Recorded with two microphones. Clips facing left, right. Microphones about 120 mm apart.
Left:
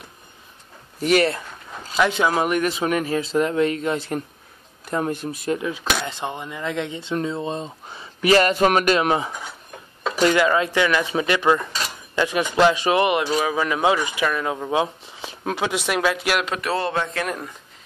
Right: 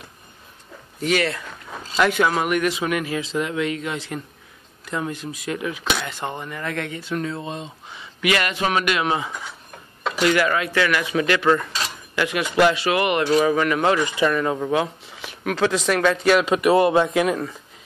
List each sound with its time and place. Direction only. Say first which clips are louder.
1.0 s speech: left 3 dB; 45° left (ahead or behind)
2.0 s speech: right 1 dB; 25° left (ahead or behind); by 5.5 s 45° left (ahead or behind)
5.5 s speech: left 1 dB; 30° left (ahead or behind)
7.5 s speech: left 3 dB; 35° left (ahead or behind)
10.3 s speech: left 2 dB; 25° left (ahead or behind); by 14.7 s 5° left (ahead or behind)
14.7 s a sound: even; 25° left (ahead or behind)
15.5 s speech: right 3 dB; 15° left (ahead or behind)
16.4 s a man's voice: right 8 dB; 10° right (ahead or behind)
17.3 s speech: right 6 dB; 5° right (ahead or behind)